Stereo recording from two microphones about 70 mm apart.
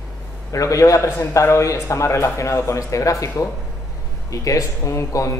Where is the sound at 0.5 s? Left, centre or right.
Left.